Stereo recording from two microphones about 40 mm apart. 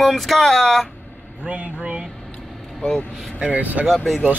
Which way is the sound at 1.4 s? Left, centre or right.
Right.